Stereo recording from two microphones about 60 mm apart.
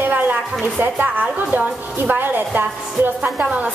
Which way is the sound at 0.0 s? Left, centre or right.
Right.